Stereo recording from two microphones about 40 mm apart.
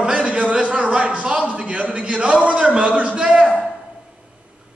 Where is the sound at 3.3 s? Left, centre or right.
Right.